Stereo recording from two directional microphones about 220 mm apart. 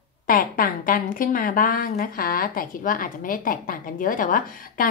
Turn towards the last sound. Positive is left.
turn(degrees=40)  # may be behind; listen again after turning